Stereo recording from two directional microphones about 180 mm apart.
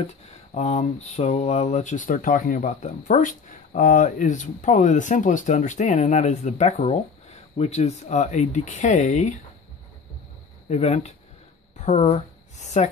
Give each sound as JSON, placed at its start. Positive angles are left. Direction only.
{"t": 0.6, "sound": "speech", "side_deg": 40}
{"t": 10.7, "sound": "speech", "side_deg": 35}